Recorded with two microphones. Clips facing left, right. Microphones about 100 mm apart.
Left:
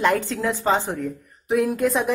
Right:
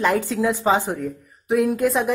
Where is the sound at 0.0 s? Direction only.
Centre (ahead or behind).